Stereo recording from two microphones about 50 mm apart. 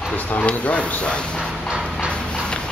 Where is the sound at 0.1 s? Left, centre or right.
Left.